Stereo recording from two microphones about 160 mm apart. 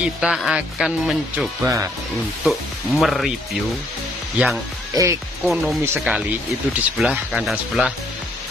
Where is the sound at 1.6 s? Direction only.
20° right (ahead or behind).